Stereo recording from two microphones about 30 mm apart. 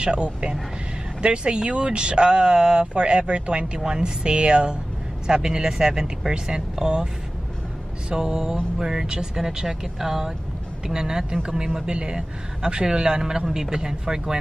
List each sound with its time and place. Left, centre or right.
0.0 s speech: right
3.8 s speech: right
4.2 s speech: right
5.2 s speech: right
8.2 s speech: centre